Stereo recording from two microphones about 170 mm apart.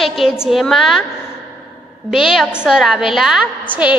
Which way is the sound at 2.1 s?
Centre (ahead or behind).